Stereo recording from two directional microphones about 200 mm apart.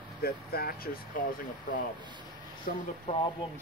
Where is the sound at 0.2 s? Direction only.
50° left (ahead or behind).